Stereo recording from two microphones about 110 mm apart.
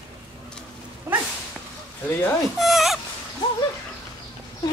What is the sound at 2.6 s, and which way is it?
Speech, centre (ahead or behind).